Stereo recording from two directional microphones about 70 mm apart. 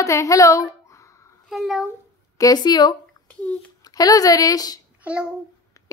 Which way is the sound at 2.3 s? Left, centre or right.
Left.